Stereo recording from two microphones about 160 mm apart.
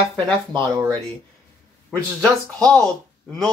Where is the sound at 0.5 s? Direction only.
25° right (ahead or behind).